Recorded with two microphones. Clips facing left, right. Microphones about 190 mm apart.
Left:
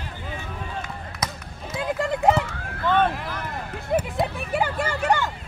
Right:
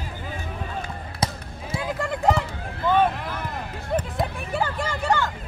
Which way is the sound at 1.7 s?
30° right (ahead or behind).